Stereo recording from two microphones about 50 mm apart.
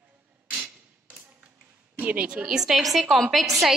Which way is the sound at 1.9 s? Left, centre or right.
Right.